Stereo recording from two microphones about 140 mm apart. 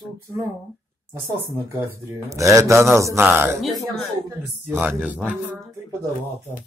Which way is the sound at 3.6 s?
Centre (ahead or behind).